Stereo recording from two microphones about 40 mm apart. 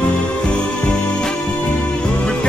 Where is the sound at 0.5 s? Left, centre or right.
Left.